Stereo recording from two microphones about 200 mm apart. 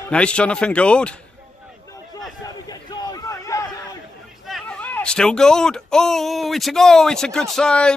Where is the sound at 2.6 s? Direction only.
20° left (ahead or behind).